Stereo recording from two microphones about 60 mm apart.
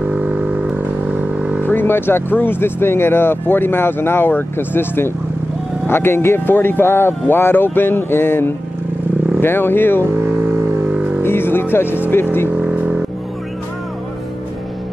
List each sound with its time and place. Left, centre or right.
0.0 s vehicle: right
1.7 s speech: left
10.1 s a sound: right
10.9 s a sound: centre
11.2 s music: left
11.7 s speech: left
12.4 s vehicle: right